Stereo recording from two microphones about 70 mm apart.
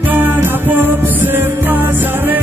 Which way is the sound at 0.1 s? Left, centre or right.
Right.